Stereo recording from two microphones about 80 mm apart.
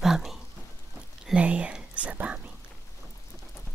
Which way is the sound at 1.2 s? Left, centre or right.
Centre.